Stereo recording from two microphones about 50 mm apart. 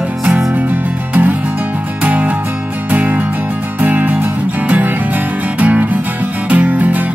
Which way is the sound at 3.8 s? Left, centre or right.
Right.